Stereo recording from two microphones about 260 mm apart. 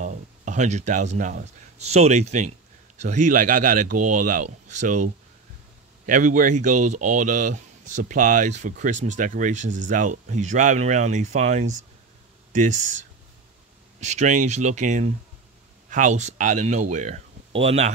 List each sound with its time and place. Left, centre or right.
0.0 s speech: right
13.9 s speech: right